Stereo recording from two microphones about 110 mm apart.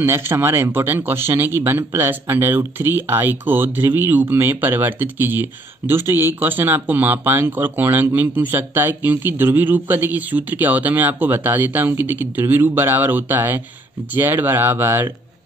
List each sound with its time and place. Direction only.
0.0 s speech: 20° right (ahead or behind)